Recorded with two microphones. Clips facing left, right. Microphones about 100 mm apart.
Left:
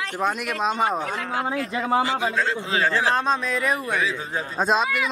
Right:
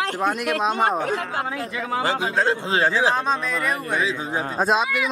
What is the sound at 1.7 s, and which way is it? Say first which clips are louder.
Speech: left 5 dB; 30° left (ahead or behind).